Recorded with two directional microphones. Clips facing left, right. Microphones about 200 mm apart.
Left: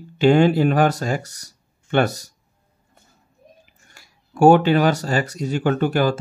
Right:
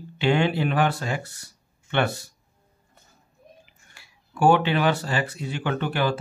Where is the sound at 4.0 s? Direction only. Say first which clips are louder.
Left 7 dB; 45° left (ahead or behind).